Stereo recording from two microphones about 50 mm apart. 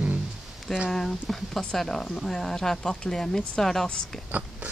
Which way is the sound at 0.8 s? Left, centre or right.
Centre.